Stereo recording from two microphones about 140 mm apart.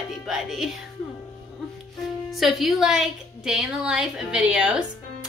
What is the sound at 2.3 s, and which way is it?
A woman's voice, centre (ahead or behind).